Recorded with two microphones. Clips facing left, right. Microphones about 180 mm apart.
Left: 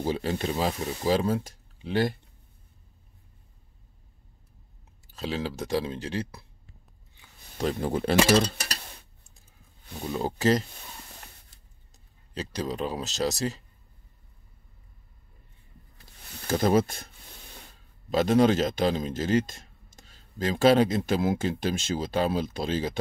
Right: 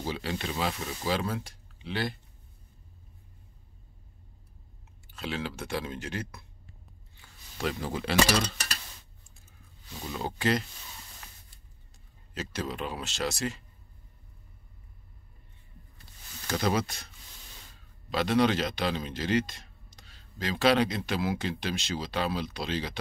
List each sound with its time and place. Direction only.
0.0 s speech: 40° left (ahead or behind)
5.0 s speech: 35° left (ahead or behind)
7.7 s speech: 50° left (ahead or behind)
8.3 s a sound: 30° left (ahead or behind)
10.0 s speech: 35° left (ahead or behind)
12.4 s speech: 35° left (ahead or behind)
16.5 s speech: 45° left (ahead or behind)
18.1 s speech: 45° left (ahead or behind)